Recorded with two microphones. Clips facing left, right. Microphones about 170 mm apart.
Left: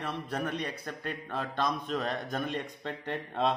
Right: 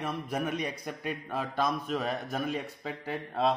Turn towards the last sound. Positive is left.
turn(degrees=0)  # may be behind; listen again after turning